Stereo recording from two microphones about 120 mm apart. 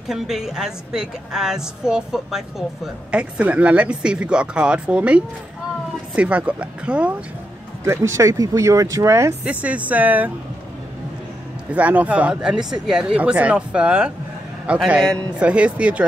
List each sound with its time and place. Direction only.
0.1 s a woman's voice: 5° right (ahead or behind)
7.8 s speech: 20° right (ahead or behind)
9.4 s a woman's voice: 10° right (ahead or behind)
11.7 s a woman's voice: 10° right (ahead or behind)